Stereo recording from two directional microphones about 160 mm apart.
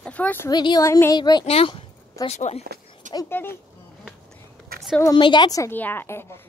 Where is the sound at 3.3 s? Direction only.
15° left (ahead or behind).